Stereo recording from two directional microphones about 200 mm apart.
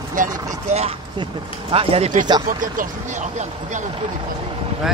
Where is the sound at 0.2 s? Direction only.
40° right (ahead or behind).